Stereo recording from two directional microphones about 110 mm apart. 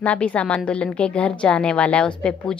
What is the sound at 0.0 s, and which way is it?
A woman's voice, 10° left (ahead or behind).